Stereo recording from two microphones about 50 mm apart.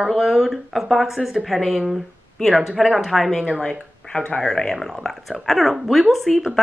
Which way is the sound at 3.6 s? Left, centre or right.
Left.